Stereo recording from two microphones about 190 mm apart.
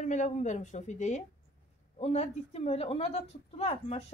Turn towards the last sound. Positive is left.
turn(degrees=35)  # may be behind; listen again after turning